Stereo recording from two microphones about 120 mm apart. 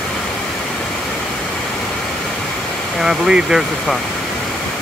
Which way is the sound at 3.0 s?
5° right (ahead or behind).